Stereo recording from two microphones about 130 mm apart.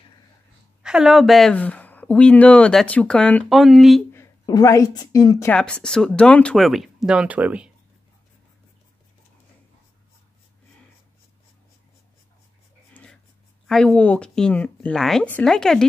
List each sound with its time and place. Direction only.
0.8 s speech: 5° right (ahead or behind)
1.6 s speech: 10° left (ahead or behind)
4.1 s a woman's voice: 25° left (ahead or behind)
5.5 s speech: 5° left (ahead or behind); by 7.7 s 10° right (ahead or behind)
12.9 s writing: 10° left (ahead or behind)
13.7 s speech: 5° left (ahead or behind)